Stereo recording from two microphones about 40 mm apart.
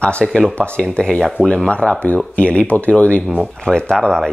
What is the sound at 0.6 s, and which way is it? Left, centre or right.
Speech, left.